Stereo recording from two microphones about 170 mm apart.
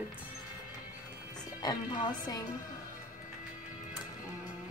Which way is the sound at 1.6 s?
25° left (ahead or behind).